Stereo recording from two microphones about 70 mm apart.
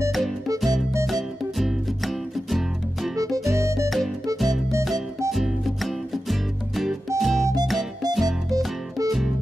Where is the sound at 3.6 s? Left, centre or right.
Right.